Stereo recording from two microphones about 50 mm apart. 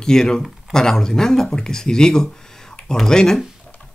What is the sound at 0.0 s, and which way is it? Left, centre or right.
Speech, centre.